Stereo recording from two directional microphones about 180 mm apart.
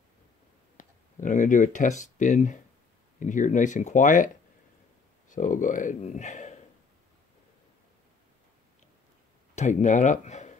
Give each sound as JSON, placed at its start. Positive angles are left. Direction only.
{"t": 0.7, "sound": "speech", "side_deg": 45}
{"t": 5.3, "sound": "speech", "side_deg": 45}
{"t": 9.6, "sound": "speech", "side_deg": 40}